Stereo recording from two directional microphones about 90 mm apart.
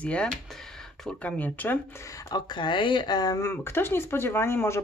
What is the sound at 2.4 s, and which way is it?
Speech, 55° left (ahead or behind).